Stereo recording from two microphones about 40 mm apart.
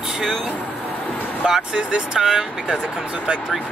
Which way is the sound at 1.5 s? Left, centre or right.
Centre.